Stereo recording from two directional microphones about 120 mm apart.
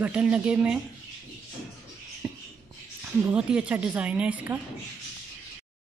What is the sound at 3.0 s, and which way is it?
A woman's voice, 10° right (ahead or behind).